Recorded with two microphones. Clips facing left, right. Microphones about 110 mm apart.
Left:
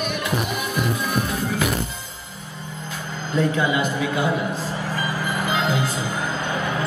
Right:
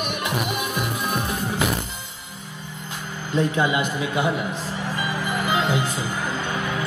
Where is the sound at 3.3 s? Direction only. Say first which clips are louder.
Even; 20° right (ahead or behind).